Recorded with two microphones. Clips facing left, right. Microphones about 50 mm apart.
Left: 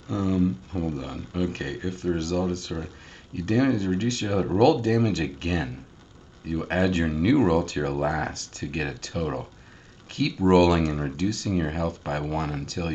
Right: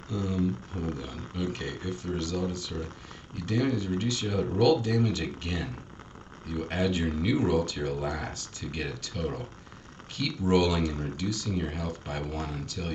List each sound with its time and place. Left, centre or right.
0.1 s speech: left
11.0 s speech: left
11.2 s speech: left